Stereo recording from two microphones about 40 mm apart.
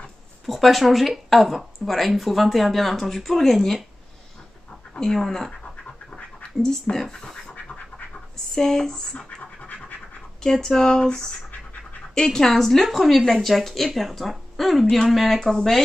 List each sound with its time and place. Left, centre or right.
0.5 s a woman's voice: centre
4.9 s a woman's voice: centre
6.0 s scratch: left
8.5 s a woman's voice: centre
9.4 s scratch: left
10.4 s a woman's voice: centre